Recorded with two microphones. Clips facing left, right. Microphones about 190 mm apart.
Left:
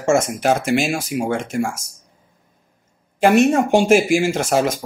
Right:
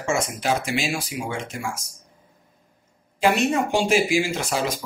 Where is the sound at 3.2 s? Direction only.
50° left (ahead or behind).